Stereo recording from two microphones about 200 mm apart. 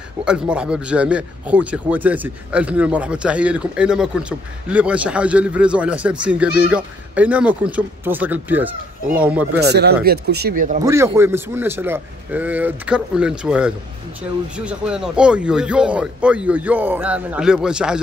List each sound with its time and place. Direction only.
0.2 s speech: 5° right (ahead or behind)
9.6 s speech: 55° right (ahead or behind)
10.9 s speech: 10° right (ahead or behind)